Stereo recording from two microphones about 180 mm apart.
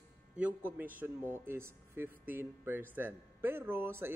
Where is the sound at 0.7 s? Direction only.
10° right (ahead or behind).